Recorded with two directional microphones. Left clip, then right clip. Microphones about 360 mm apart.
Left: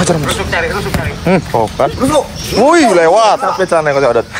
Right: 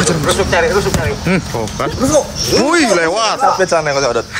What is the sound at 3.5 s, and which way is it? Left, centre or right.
Speech, left.